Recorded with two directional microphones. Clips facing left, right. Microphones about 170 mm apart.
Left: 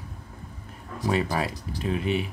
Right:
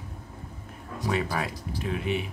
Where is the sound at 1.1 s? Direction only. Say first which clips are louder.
Left 3 dB; 30° left (ahead or behind).